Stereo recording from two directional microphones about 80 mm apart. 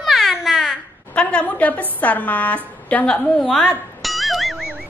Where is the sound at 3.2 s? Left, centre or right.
Centre.